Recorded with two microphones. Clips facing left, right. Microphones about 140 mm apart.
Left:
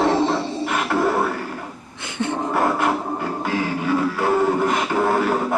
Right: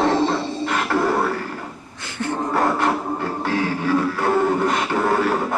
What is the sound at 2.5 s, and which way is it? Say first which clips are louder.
Music: right 1 dB; 10° left (ahead or behind).